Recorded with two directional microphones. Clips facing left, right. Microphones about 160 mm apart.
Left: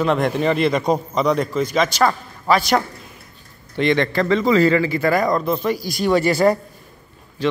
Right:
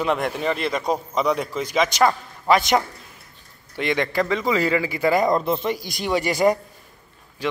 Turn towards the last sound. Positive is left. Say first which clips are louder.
# left 5 dB
turn(degrees=-10)  # may be behind; listen again after turning